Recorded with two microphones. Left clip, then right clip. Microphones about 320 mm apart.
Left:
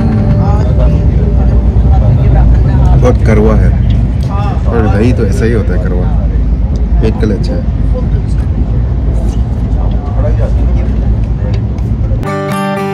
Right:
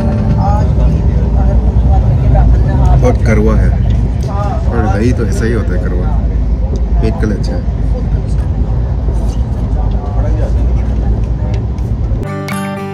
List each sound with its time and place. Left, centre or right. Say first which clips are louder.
3.0 s speech: left 4 dB; centre
4.9 s speech: left 3 dB; centre
12.3 s music: left 7 dB; centre